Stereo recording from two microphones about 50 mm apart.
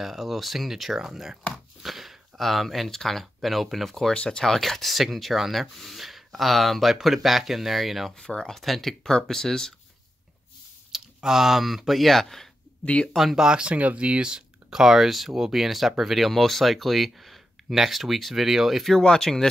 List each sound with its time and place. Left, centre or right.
0.0 s speech: centre
4.1 s speech: centre
4.5 s speech: centre
8.2 s speech: centre
8.5 s speech: centre
10.9 s speech: centre
12.8 s speech: left
13.1 s speech: centre
13.4 s speech: centre
18.9 s speech: centre